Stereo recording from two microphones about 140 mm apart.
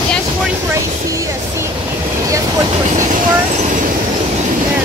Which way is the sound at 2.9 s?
65° right (ahead or behind).